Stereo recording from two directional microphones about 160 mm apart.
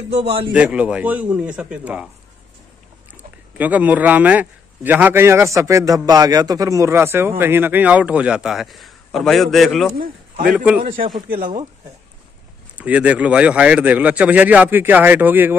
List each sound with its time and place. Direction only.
0.5 s speech: 10° right (ahead or behind)
3.1 s speech: 10° right (ahead or behind)
10.9 s a man's voice: 30° right (ahead or behind)
11.2 s speech: 65° right (ahead or behind)
12.7 s speech: 10° right (ahead or behind)